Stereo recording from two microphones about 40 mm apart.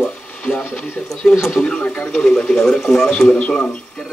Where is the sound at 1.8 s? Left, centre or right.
Left.